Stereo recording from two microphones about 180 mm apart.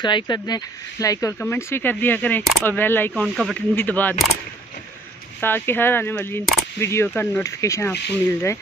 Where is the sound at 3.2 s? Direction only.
Centre (ahead or behind).